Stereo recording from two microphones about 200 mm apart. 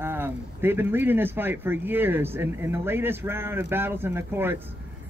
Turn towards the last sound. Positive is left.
turn(degrees=-10)  # may be behind; listen again after turning